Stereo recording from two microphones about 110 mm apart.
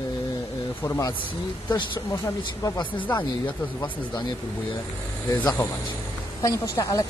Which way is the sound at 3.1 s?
40° left (ahead or behind).